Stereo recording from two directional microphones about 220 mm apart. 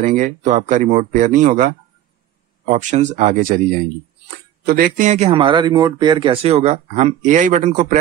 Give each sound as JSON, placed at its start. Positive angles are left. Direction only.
{"t": 0.0, "sound": "speech", "side_deg": -35}
{"t": 4.6, "sound": "speech", "side_deg": -40}